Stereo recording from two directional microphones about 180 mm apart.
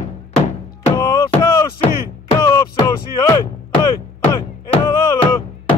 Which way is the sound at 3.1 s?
20° left (ahead or behind).